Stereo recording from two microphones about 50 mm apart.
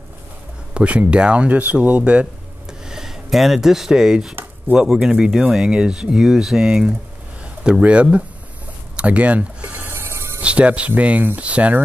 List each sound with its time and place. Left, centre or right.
0.7 s speech: right
2.8 s speech: centre
7.8 s speech: right
8.9 s a sound: right
9.8 s music: right
10.4 s speech: right